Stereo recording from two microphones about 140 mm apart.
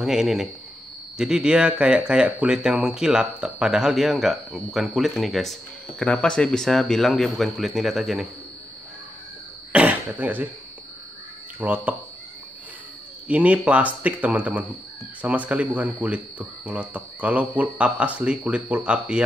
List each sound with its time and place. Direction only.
0.0 s speech: 5° right (ahead or behind)
9.7 s cough: 10° right (ahead or behind)
11.6 s speech: 10° right (ahead or behind)
13.3 s speech: 10° right (ahead or behind)